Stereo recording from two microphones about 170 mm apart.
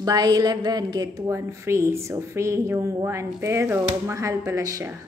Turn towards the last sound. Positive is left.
turn(degrees=-20)  # may be behind; listen again after turning